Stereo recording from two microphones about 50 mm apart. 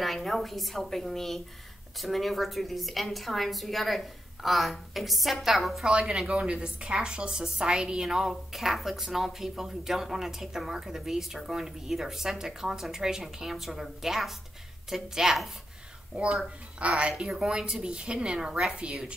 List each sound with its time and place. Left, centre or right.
0.0 s a woman's voice: centre
5.9 s a woman's voice: centre
16.2 s a woman's voice: right